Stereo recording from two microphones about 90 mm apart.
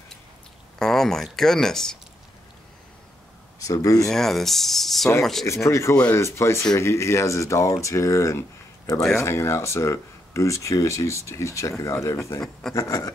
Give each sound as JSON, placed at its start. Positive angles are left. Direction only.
{"t": 0.7, "sound": "speech", "side_deg": 5}
{"t": 3.5, "sound": "speech", "side_deg": 40}
{"t": 4.1, "sound": "speech", "side_deg": 5}
{"t": 5.5, "sound": "speech", "side_deg": 35}